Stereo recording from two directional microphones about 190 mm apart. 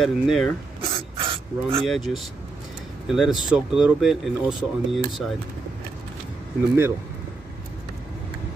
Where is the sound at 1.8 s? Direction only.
Centre (ahead or behind).